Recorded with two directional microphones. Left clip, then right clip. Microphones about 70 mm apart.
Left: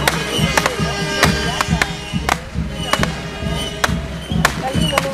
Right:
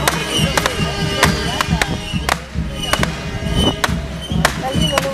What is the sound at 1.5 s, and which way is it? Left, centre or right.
Music, right.